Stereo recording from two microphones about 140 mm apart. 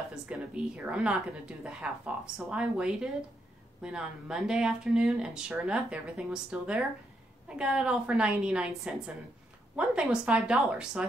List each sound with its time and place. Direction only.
0.1 s a woman's voice: 5° right (ahead or behind)